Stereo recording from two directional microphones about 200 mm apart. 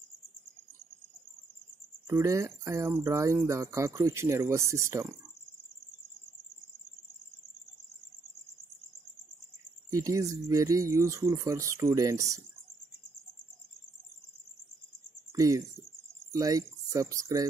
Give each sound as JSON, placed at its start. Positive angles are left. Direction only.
{"t": 2.0, "sound": "speech", "side_deg": -15}
{"t": 9.8, "sound": "speech", "side_deg": -15}
{"t": 15.3, "sound": "speech", "side_deg": -15}